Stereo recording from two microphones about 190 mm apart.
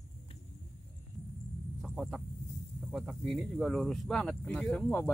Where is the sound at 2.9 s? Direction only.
Centre (ahead or behind).